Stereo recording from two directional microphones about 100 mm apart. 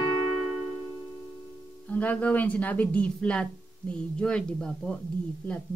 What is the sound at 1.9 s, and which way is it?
Speech, 15° left (ahead or behind).